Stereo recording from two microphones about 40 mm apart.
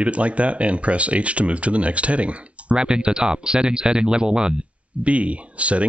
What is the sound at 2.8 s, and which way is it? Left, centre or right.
Speech, right.